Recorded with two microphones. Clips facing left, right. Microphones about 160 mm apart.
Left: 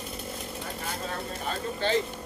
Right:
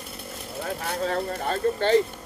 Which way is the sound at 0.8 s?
70° right (ahead or behind).